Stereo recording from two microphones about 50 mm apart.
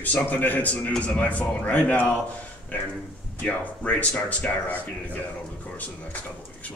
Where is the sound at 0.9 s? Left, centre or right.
Left.